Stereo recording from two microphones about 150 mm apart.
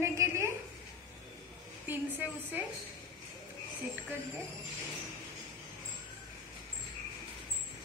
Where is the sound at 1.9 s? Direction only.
10° right (ahead or behind).